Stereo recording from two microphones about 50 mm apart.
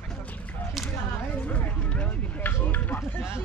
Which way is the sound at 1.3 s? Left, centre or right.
Left.